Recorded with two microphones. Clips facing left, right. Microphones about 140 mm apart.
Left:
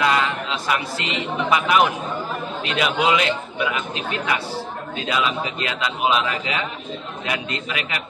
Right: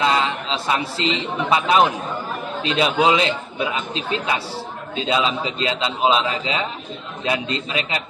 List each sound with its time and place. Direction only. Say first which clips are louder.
0.0 s a man's voice: right 1 dB; 25° right (ahead or behind)